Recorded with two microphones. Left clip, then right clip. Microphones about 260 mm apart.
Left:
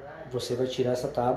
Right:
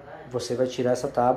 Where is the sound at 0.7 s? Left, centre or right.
Centre.